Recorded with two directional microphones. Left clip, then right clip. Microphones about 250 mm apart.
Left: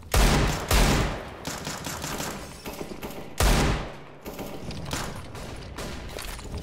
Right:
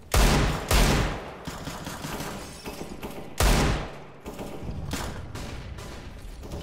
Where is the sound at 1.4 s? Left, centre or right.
Left.